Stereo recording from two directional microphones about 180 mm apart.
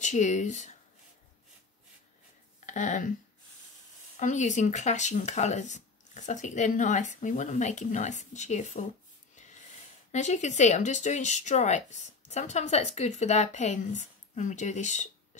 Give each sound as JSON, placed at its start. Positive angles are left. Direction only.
{"t": 0.0, "sound": "speech", "side_deg": 40}
{"t": 2.6, "sound": "speech", "side_deg": 45}
{"t": 4.2, "sound": "speech", "side_deg": 40}
{"t": 9.3, "sound": "snort", "side_deg": 40}
{"t": 10.1, "sound": "speech", "side_deg": 40}